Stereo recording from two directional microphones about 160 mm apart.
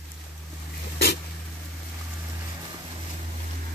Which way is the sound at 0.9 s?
90° left.